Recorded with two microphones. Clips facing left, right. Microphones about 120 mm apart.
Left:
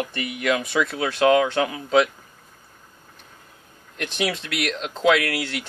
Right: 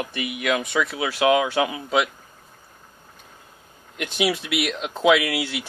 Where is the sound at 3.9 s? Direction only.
10° right (ahead or behind).